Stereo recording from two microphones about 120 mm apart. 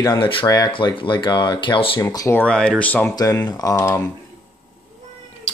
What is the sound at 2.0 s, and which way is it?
Speech, 25° left (ahead or behind).